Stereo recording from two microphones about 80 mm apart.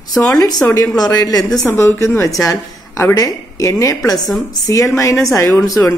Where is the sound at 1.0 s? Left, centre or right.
Left.